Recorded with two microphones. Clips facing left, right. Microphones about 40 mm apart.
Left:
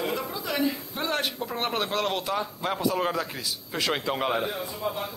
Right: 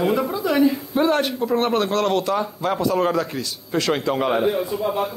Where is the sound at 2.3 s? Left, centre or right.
Centre.